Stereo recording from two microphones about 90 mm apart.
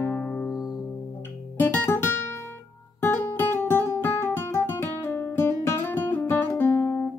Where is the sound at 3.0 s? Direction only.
25° left (ahead or behind).